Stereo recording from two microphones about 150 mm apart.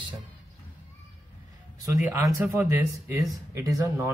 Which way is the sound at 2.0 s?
20° right (ahead or behind).